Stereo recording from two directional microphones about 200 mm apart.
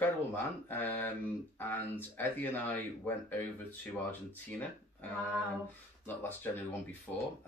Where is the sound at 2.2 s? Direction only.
10° left (ahead or behind).